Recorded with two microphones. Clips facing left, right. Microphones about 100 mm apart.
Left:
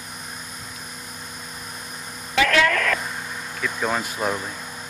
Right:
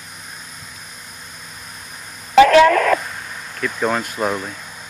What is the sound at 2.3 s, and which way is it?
Radio, 30° right (ahead or behind).